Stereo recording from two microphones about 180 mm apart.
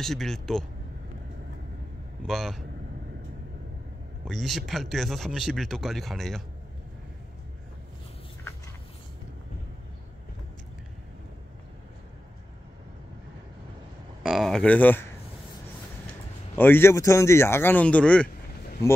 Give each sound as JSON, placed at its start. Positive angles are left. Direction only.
{"t": 0.0, "sound": "speech", "side_deg": 0}
{"t": 2.2, "sound": "speech", "side_deg": 0}
{"t": 4.2, "sound": "speech", "side_deg": 0}
{"t": 14.2, "sound": "speech", "side_deg": 0}
{"t": 16.5, "sound": "a man's voice", "side_deg": 10}